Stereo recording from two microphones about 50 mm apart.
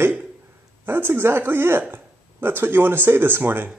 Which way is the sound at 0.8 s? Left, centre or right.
Right.